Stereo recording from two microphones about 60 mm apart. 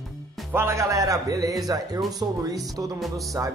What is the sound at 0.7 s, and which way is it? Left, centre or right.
Speech, right.